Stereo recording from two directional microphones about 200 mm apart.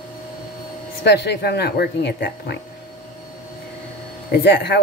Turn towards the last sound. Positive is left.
turn(degrees=55)  # may be behind; listen again after turning